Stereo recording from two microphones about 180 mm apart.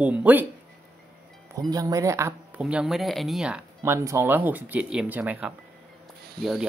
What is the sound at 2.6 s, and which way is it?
Speech, centre (ahead or behind).